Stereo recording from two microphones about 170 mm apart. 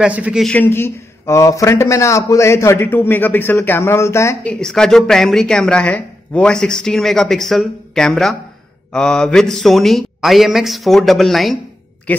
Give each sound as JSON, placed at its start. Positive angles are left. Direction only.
{"t": 0.0, "sound": "speech", "side_deg": -5}
{"t": 0.5, "sound": "a man's voice", "side_deg": 10}
{"t": 4.6, "sound": "a man's voice", "side_deg": 5}